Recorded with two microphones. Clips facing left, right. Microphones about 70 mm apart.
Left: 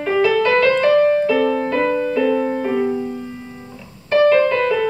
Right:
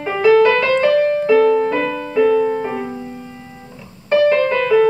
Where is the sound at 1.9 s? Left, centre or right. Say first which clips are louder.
Right 2 dB; centre.